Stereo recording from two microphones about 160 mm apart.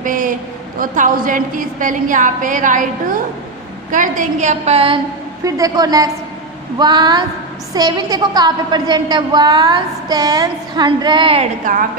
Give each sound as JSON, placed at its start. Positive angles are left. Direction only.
{"t": 0.0, "sound": "a sound", "side_deg": -55}
{"t": 0.7, "sound": "a woman's voice", "side_deg": -60}
{"t": 3.9, "sound": "a woman's voice", "side_deg": -55}
{"t": 5.4, "sound": "a woman's voice", "side_deg": -20}
{"t": 11.7, "sound": "a woman's voice", "side_deg": -55}